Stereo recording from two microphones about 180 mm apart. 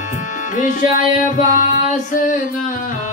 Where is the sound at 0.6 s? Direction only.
45° left (ahead or behind).